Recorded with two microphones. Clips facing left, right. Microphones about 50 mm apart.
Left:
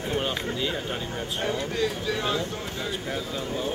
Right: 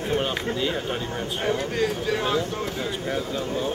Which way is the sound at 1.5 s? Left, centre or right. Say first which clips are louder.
Right 3 dB; right.